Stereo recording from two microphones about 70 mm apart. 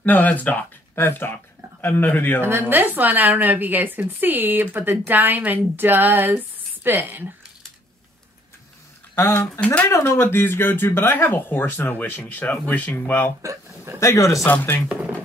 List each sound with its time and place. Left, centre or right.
0.0 s speech: left
0.9 s speech: left
2.7 s a woman's voice: right
9.1 s speech: left
13.4 s speech: right
13.9 s speech: left
14.5 s speech: left
14.9 s speech: centre